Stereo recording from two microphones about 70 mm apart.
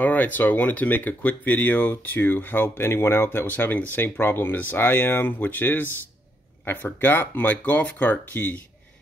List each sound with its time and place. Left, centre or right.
0.0 s speech: left